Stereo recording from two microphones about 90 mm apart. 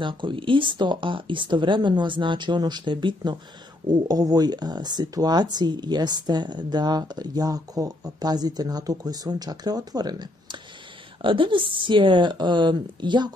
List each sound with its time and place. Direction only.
0.0 s speech: 65° right (ahead or behind)
4.1 s speech: 45° right (ahead or behind)
11.2 s speech: 70° right (ahead or behind)